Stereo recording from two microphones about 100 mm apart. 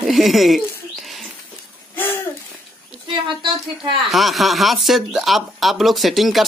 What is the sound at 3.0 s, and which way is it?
A woman's voice, 55° right (ahead or behind).